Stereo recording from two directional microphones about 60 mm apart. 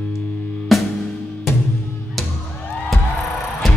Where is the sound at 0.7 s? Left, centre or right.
Centre.